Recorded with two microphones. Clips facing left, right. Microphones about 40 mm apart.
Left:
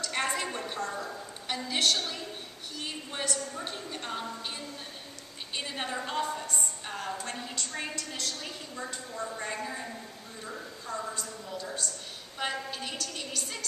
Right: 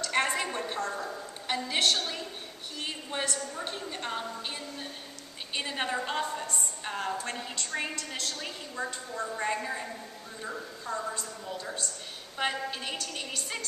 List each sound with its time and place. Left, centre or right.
0.0 s a sound: centre
2.8 s a woman's voice: centre
9.1 s a woman's voice: centre
9.5 s a woman's voice: centre